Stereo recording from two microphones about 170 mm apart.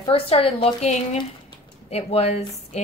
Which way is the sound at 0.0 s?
35° left (ahead or behind).